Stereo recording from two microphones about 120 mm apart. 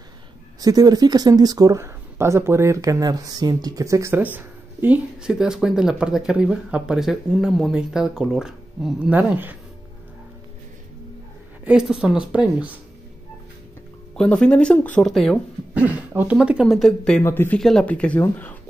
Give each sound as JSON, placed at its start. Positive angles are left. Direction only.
{"t": 0.6, "sound": "speech", "side_deg": -30}
{"t": 11.6, "sound": "a woman's voice", "side_deg": -10}
{"t": 14.1, "sound": "speech", "side_deg": 5}
{"t": 15.7, "sound": "a woman's voice", "side_deg": -15}
{"t": 17.2, "sound": "speech", "side_deg": 20}
{"t": 17.6, "sound": "speech", "side_deg": 5}